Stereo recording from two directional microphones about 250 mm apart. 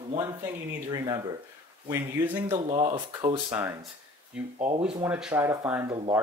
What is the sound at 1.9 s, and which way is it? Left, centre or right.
Speech, centre.